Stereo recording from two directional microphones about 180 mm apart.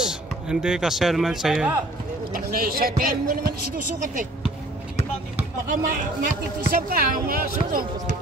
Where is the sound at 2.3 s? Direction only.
55° right (ahead or behind).